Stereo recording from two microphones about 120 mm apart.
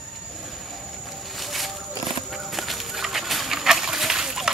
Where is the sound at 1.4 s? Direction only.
Centre (ahead or behind).